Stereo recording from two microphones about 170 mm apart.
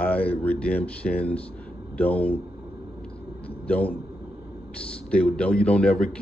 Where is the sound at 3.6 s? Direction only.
10° left (ahead or behind).